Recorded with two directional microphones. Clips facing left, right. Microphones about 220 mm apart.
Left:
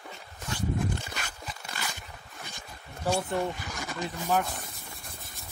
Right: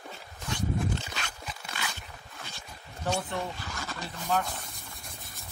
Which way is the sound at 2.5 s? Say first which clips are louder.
Left 1 dB; 10° left (ahead or behind).